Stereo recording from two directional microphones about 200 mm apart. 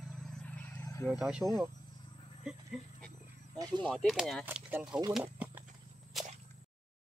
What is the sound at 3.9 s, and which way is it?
Speech, centre (ahead or behind).